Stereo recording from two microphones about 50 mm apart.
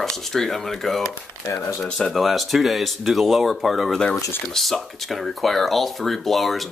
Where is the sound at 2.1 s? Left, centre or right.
Centre.